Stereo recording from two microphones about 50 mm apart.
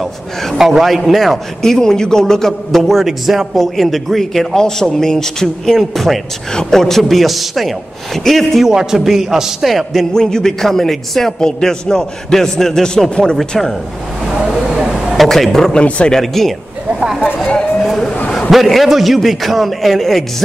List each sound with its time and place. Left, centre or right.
0.0 s a man's voice: centre
0.6 s a man's voice: centre
8.6 s a man's voice: centre
10.1 s a man's voice: centre
14.2 s vehicle: centre
15.1 s a man's voice: centre
17.0 s speech: centre
17.4 s a sound: centre
18.5 s a man's voice: centre